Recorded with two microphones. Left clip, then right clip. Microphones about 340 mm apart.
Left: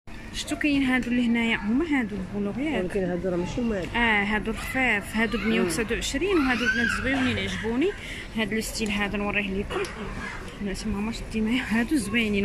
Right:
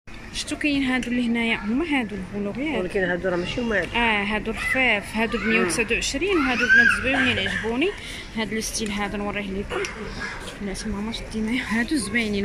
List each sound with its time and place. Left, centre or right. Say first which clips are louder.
0.5 s speech: right 1 dB; centre
3.0 s speech: right 4 dB; right
3.9 s speech: left 2 dB; centre
11.1 s speech: even; centre